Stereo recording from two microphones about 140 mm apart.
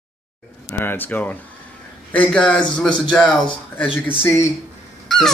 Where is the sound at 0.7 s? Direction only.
15° left (ahead or behind).